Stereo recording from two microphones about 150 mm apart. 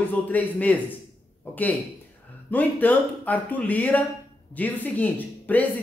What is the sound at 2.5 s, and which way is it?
Speech, 10° left (ahead or behind).